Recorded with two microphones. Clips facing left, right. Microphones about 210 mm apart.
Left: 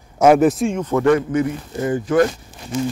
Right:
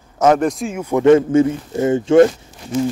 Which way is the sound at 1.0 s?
25° right (ahead or behind).